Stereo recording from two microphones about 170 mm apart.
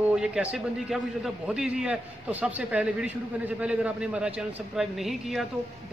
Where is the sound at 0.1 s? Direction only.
5° right (ahead or behind).